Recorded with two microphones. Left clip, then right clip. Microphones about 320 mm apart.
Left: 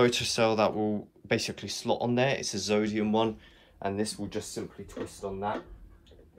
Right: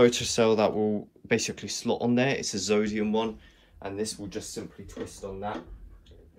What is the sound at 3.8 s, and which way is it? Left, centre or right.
Speech, left.